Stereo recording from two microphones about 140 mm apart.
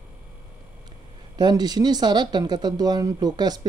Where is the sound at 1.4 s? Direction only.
30° right (ahead or behind).